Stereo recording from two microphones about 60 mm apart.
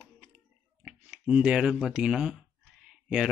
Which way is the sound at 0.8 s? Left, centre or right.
Centre.